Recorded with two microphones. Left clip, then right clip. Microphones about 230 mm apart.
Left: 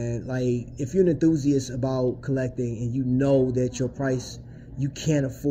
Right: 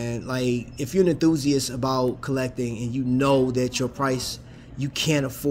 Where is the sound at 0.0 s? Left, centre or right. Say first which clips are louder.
Right 1 dB; right.